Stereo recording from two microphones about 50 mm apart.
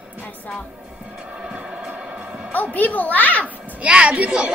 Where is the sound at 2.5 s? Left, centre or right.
Left.